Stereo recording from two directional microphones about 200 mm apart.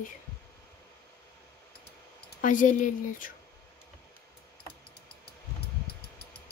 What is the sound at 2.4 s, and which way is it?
Speech, 40° left (ahead or behind).